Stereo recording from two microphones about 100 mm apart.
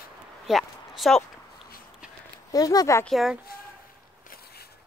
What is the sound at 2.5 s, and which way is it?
Speech, 35° left (ahead or behind).